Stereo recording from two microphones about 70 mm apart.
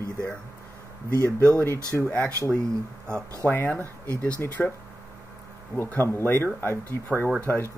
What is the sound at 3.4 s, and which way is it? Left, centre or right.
Speech, left.